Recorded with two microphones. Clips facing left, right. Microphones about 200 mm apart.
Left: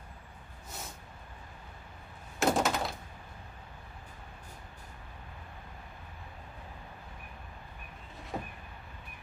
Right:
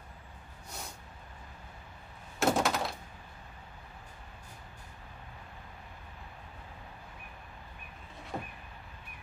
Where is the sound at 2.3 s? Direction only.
Centre (ahead or behind).